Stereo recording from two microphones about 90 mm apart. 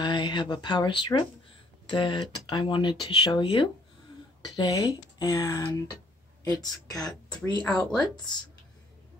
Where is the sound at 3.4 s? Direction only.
75° left (ahead or behind).